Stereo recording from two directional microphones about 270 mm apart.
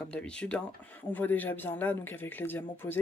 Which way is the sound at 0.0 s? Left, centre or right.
Centre.